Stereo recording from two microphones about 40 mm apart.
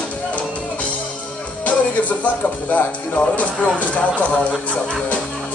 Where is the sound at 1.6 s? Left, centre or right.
Left.